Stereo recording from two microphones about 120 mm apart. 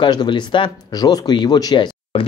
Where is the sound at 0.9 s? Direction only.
30° left (ahead or behind).